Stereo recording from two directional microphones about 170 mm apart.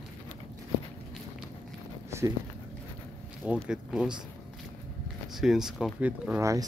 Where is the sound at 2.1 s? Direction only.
15° right (ahead or behind).